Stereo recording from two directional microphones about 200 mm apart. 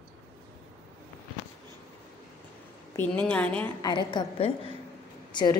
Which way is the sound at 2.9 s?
10° left (ahead or behind).